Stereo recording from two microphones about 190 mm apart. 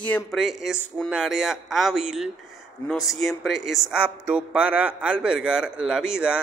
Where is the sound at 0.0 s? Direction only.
5° left (ahead or behind).